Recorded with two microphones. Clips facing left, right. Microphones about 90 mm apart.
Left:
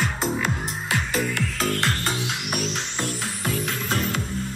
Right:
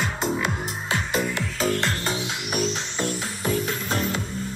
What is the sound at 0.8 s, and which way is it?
Music, 35° right (ahead or behind).